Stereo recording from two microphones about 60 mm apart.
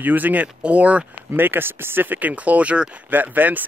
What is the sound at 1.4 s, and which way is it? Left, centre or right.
Speech, right.